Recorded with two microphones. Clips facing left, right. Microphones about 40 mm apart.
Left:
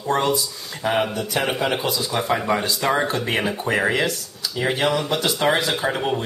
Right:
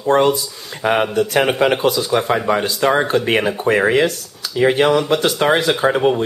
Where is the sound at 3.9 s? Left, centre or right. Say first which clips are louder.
Right 6 dB; right.